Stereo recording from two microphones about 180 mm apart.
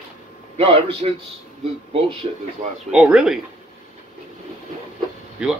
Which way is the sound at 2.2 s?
35° right (ahead or behind).